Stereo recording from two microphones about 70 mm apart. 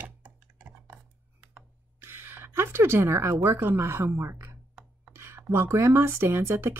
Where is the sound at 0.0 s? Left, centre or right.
Right.